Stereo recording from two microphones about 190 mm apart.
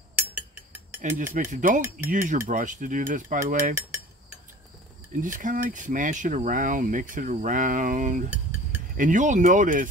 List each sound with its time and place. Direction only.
1.0 s speech: 40° right (ahead or behind)
5.2 s speech: 45° right (ahead or behind)